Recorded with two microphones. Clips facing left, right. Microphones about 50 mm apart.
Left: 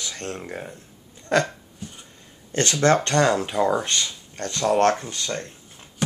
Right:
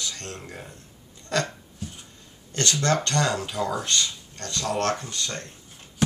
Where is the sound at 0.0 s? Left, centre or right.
Left.